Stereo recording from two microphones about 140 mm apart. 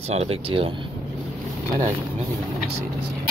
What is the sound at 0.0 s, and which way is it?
Speech, 50° right (ahead or behind).